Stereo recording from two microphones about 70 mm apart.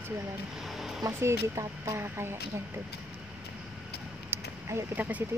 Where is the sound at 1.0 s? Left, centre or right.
Right.